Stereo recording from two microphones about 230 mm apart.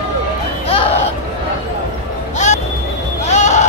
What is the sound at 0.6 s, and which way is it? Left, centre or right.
Music, left.